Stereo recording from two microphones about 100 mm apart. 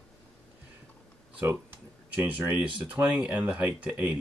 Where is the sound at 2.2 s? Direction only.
15° right (ahead or behind).